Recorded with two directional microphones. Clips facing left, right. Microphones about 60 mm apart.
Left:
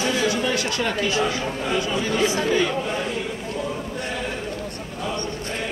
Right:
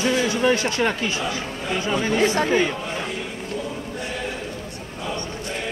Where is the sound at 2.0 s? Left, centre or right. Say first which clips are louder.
Right 2 dB; right.